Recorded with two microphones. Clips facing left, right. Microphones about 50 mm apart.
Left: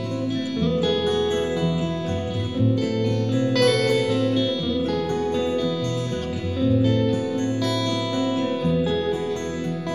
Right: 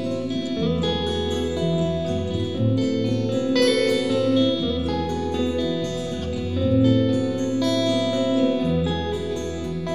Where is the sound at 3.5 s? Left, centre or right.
Centre.